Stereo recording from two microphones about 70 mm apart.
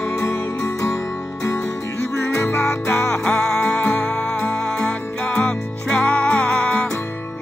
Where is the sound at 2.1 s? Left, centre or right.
Left; by 6.9 s centre.